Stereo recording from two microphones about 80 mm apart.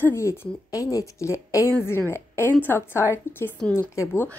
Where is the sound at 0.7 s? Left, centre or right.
Left.